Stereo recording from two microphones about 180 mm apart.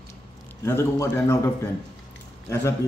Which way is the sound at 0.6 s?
15° left (ahead or behind).